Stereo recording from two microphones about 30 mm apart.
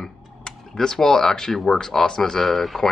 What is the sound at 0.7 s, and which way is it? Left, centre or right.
Speech, centre.